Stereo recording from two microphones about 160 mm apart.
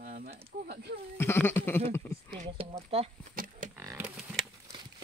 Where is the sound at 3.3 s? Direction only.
60° right (ahead or behind).